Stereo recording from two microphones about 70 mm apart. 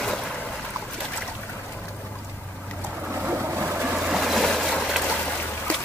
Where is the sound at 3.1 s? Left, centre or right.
Right.